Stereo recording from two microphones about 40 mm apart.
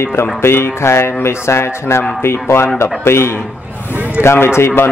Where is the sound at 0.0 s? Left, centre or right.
Left.